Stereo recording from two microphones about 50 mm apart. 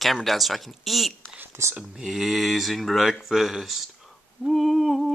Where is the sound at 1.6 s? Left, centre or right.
Right.